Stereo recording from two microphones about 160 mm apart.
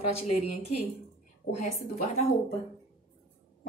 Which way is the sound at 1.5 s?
40° left (ahead or behind).